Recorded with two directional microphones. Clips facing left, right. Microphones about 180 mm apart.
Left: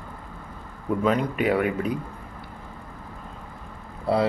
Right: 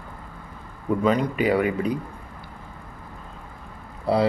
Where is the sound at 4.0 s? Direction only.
Centre (ahead or behind).